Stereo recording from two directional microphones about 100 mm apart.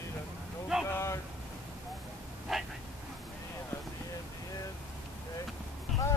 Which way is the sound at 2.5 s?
Centre (ahead or behind).